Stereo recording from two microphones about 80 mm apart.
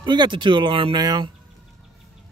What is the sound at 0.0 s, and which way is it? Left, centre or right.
Speech, right.